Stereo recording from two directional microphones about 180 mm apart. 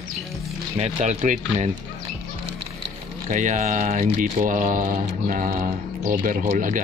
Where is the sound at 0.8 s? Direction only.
40° right (ahead or behind).